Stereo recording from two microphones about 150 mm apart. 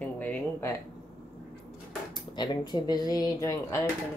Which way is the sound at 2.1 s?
30° left (ahead or behind).